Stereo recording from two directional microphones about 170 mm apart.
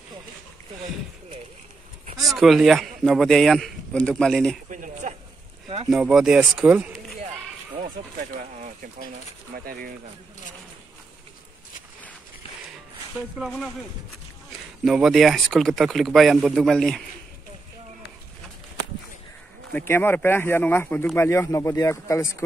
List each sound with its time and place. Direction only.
2.1 s speech: centre (ahead or behind)
4.6 s a sound: 45° right (ahead or behind)
5.9 s speech: 5° right (ahead or behind)
7.7 s speech: 50° right (ahead or behind)
13.4 s speech: centre (ahead or behind)
14.9 s speech: centre (ahead or behind)
19.7 s speech: 10° left (ahead or behind)